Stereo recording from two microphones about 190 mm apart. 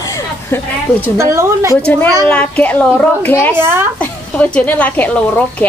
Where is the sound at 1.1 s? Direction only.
15° right (ahead or behind).